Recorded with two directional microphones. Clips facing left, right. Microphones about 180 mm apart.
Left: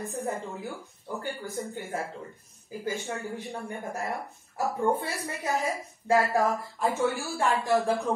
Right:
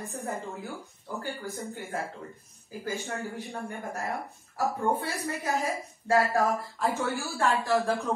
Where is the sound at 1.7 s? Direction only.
15° left (ahead or behind).